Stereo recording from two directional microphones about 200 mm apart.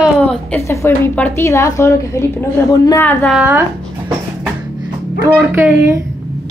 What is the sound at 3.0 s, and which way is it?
Speech, centre (ahead or behind).